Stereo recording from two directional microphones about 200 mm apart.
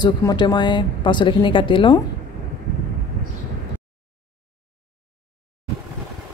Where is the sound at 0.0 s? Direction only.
20° left (ahead or behind).